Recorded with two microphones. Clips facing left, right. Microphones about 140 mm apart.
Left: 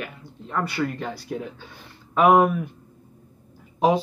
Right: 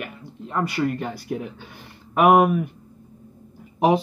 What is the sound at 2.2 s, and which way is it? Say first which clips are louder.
Speech: right 1 dB; 15° right (ahead or behind).